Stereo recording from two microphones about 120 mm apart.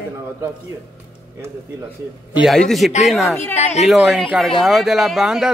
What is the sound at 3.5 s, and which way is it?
Speech, 70° left (ahead or behind).